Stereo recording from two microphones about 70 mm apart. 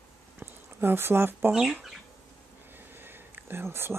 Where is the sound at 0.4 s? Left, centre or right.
Right.